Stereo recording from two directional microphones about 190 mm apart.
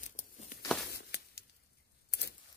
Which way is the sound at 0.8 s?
60° left (ahead or behind).